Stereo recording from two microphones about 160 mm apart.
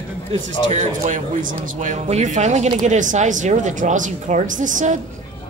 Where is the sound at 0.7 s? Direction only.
45° right (ahead or behind).